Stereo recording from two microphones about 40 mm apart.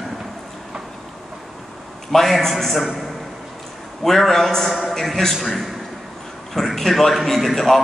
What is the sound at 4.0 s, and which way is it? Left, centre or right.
A man's voice, centre.